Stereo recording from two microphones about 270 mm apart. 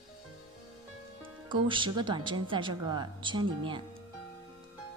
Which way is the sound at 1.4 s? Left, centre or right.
Centre.